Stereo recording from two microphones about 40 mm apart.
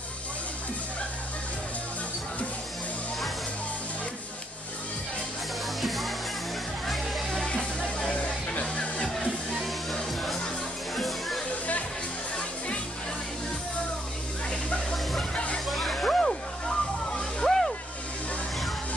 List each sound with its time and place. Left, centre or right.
5.8 s music: centre
8.1 s music: left
9.2 s music: centre
14.5 s music: left
15.6 s music: centre
16.0 s snake: centre